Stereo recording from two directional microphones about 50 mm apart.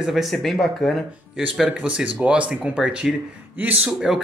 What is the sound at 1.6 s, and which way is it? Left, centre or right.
Speech, right.